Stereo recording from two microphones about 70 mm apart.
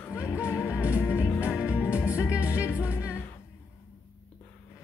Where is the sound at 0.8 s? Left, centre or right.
Left.